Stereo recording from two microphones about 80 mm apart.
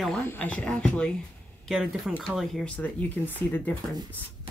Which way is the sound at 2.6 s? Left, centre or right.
Centre.